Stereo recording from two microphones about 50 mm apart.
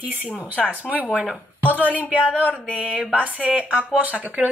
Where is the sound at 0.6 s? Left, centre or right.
Right.